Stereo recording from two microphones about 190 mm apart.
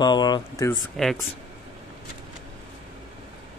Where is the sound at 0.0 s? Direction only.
20° left (ahead or behind).